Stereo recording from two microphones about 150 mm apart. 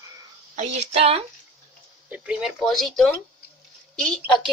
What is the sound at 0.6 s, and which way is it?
Speech, 45° right (ahead or behind).